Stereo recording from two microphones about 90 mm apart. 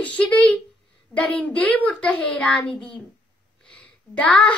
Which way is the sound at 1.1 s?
15° left (ahead or behind).